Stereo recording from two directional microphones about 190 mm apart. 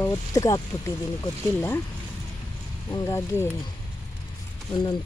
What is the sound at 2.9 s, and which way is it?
Speech, 15° left (ahead or behind).